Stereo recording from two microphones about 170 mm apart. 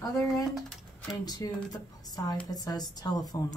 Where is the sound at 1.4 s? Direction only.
20° left (ahead or behind).